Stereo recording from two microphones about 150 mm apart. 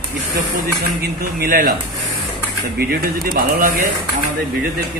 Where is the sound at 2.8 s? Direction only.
90° right.